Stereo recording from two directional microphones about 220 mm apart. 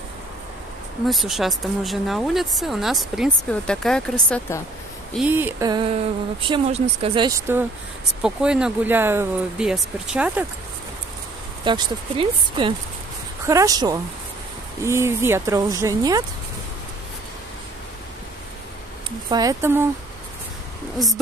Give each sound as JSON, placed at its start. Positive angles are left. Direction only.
{"t": 1.0, "sound": "speech", "side_deg": 0}
{"t": 5.1, "sound": "speech", "side_deg": -5}
{"t": 11.6, "sound": "speech", "side_deg": -20}
{"t": 19.0, "sound": "speech", "side_deg": -15}